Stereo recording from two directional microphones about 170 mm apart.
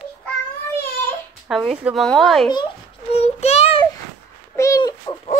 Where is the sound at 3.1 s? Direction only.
40° left (ahead or behind).